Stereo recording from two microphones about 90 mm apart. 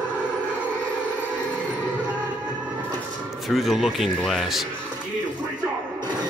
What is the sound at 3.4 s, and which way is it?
Speech, 5° right (ahead or behind).